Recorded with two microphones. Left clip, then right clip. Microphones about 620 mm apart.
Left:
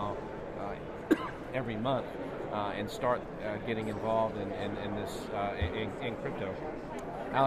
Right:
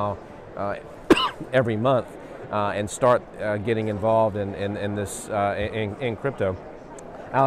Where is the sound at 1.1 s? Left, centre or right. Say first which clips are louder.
Right 12 dB; right.